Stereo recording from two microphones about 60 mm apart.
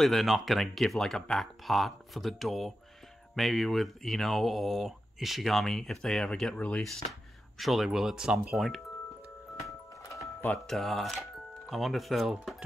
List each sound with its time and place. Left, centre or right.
0.0 s speech: centre
6.5 s a sound: left
6.8 s speech: centre
10.7 s speech: centre